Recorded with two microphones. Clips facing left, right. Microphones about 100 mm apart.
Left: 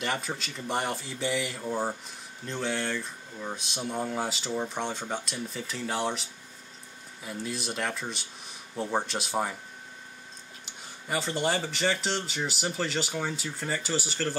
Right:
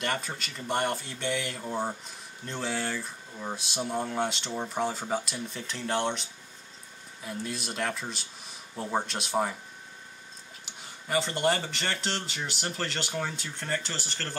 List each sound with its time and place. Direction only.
0.0 s speech: centre (ahead or behind)
7.2 s speech: centre (ahead or behind)
10.6 s speech: centre (ahead or behind)